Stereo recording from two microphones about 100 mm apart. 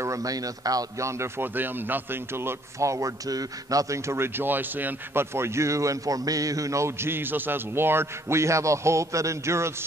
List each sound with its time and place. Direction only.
0.0 s a man's voice: 35° right (ahead or behind)